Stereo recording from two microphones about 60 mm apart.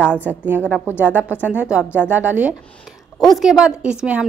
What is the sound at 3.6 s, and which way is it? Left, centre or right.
Speech, centre.